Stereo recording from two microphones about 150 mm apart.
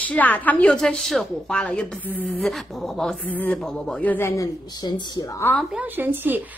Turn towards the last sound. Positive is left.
turn(degrees=-15)  # may be behind; listen again after turning